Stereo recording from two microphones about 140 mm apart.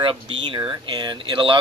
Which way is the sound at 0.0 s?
35° right (ahead or behind).